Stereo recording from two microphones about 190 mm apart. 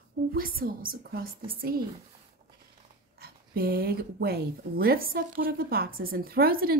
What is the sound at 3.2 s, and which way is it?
A woman's voice, 50° right (ahead or behind).